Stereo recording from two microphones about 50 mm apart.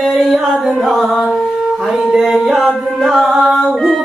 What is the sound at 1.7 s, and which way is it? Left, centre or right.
Singing, centre.